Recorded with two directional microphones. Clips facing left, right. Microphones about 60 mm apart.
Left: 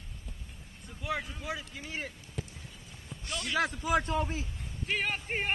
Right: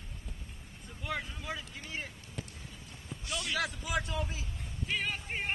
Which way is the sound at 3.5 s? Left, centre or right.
Left.